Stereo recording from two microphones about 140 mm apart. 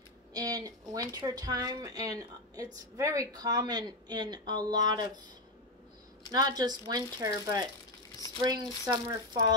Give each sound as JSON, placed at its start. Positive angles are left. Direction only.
{"t": 0.3, "sound": "speech", "side_deg": -25}
{"t": 6.3, "sound": "speech", "side_deg": -25}